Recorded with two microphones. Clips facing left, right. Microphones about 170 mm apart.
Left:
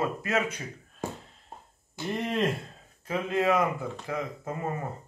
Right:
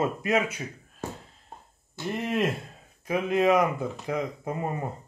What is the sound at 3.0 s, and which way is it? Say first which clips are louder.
Speech: right 3 dB; 15° right (ahead or behind).